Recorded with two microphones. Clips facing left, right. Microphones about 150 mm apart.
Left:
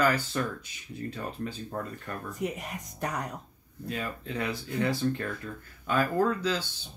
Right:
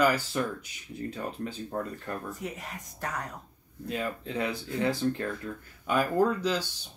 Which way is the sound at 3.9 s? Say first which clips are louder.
Right 2 dB; 20° right (ahead or behind).